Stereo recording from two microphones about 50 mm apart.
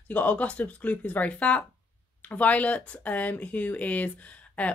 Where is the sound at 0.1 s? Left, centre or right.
Left.